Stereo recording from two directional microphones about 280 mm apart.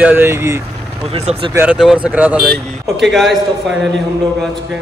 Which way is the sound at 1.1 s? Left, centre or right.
Right.